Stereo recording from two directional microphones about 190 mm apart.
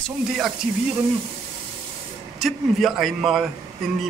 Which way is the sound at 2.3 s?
Centre (ahead or behind).